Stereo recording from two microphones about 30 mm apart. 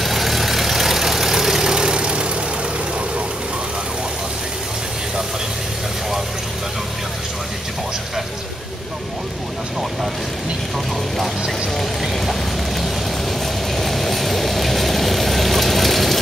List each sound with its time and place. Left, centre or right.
0.0 s vehicle: centre; by 2.0 s right
2.0 s vehicle: right
12.0 s vehicle: centre